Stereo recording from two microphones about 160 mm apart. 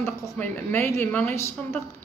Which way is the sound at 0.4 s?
10° left (ahead or behind).